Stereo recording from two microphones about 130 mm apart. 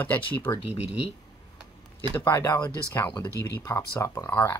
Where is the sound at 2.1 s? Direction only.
20° left (ahead or behind).